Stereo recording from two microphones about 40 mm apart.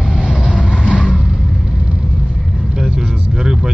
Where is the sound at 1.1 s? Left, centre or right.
Centre.